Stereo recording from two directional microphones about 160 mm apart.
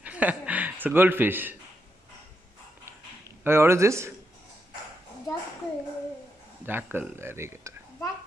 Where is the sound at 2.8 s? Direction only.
15° right (ahead or behind).